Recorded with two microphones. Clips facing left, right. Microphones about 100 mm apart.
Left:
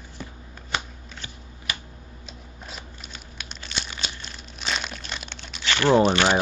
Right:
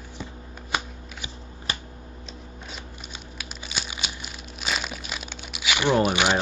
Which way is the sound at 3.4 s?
5° right (ahead or behind).